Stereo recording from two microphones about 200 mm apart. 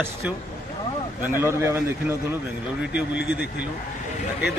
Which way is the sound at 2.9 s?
5° right (ahead or behind).